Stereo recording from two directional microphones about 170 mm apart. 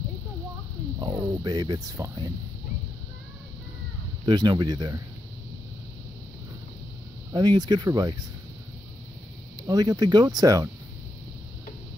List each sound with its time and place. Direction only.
0.9 s speech: 25° right (ahead or behind)
4.3 s speech: 25° right (ahead or behind)
7.3 s speech: 25° right (ahead or behind)
9.6 s speech: 20° right (ahead or behind)